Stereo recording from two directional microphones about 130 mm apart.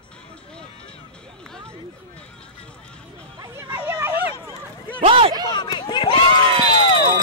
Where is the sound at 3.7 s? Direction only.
10° right (ahead or behind).